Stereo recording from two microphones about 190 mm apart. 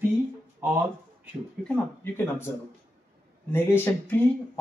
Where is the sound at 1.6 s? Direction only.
10° left (ahead or behind).